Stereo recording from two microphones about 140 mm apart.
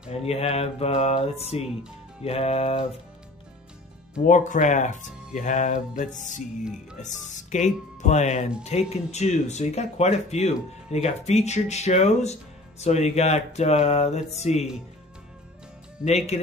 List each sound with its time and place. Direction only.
0.1 s speech: 45° left (ahead or behind)
4.2 s speech: 65° left (ahead or behind)